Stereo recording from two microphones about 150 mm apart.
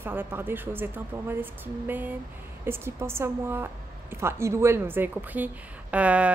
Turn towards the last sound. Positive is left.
turn(degrees=-10)  # may be behind; listen again after turning